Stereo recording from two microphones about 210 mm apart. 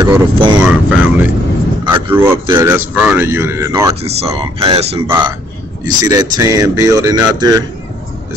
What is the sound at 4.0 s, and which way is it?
Speech, 30° right (ahead or behind).